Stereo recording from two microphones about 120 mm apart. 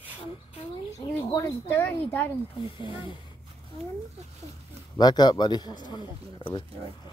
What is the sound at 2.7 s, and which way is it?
Speech, 45° left (ahead or behind).